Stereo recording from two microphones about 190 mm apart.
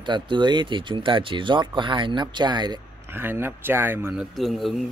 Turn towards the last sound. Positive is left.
turn(degrees=0)  # may be behind; listen again after turning